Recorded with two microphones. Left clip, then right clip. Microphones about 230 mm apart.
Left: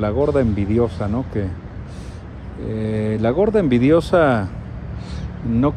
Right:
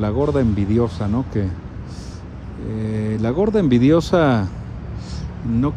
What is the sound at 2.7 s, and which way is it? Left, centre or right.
Speech, centre.